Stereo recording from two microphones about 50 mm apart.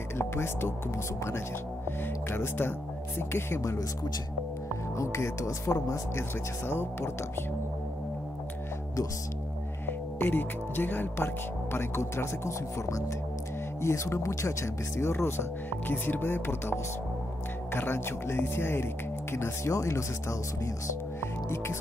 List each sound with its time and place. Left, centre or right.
0.2 s speech: left
2.2 s speech: left
4.9 s speech: left
6.7 s speech: left
9.8 s speech: left
15.9 s speech: left
17.7 s speech: left